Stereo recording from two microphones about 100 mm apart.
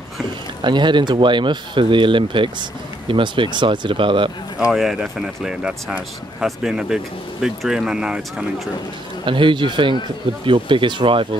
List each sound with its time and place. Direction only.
0.6 s speech: 50° right (ahead or behind)
4.6 s speech: 5° right (ahead or behind)
9.2 s speech: 55° right (ahead or behind)